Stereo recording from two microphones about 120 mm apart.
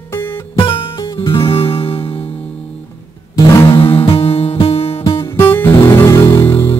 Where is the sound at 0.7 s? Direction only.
45° left (ahead or behind).